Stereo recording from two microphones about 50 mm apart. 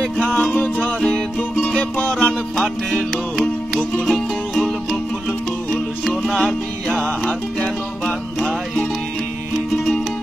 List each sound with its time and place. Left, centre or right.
0.3 s music: left
2.5 s music: centre
5.7 s music: centre